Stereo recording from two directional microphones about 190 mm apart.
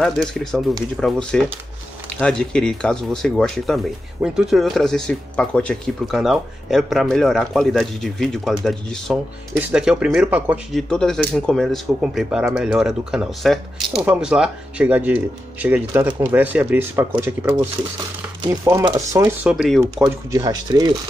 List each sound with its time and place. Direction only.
0.0 s speech: centre (ahead or behind)
10.7 s speech: 5° left (ahead or behind); by 19.3 s 15° right (ahead or behind)
19.4 s speech: centre (ahead or behind)
20.2 s speech: 20° right (ahead or behind)